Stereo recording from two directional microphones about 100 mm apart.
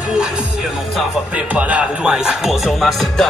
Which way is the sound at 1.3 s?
15° right (ahead or behind).